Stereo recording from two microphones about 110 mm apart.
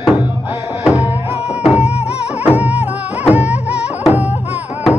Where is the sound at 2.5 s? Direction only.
15° right (ahead or behind).